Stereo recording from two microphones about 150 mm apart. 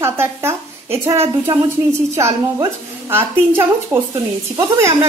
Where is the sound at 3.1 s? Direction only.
15° right (ahead or behind).